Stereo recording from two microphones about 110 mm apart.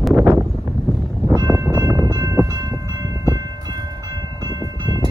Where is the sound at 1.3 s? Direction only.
30° right (ahead or behind).